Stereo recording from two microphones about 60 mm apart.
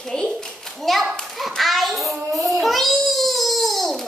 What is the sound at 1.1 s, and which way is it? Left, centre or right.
Hands, centre.